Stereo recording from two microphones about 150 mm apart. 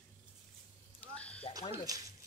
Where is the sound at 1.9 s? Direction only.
25° right (ahead or behind).